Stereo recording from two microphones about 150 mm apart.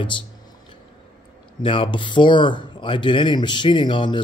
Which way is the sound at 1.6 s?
35° left (ahead or behind).